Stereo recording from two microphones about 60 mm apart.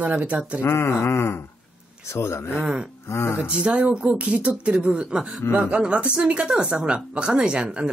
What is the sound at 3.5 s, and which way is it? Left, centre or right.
Speech, centre.